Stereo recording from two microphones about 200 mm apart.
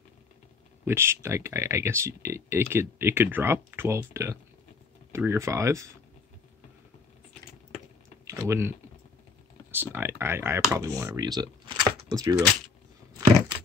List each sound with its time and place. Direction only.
0.8 s speech: 10° right (ahead or behind)
8.3 s a sound: 15° right (ahead or behind)
9.7 s speech: 10° right (ahead or behind)